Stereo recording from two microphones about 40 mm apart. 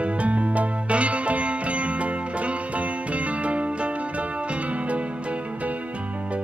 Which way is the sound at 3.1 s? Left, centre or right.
Right.